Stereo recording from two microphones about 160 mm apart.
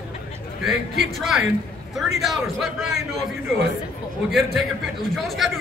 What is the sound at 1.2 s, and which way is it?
Speech, centre (ahead or behind).